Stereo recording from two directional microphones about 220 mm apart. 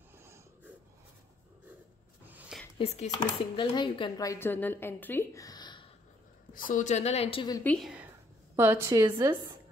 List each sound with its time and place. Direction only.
2.2 s a sound: 10° right (ahead or behind)
2.8 s a woman's voice: 30° left (ahead or behind)
6.5 s a woman's voice: 40° left (ahead or behind); by 7.6 s 20° left (ahead or behind)
7.6 s a woman's voice: centre (ahead or behind); by 9.6 s 20° right (ahead or behind)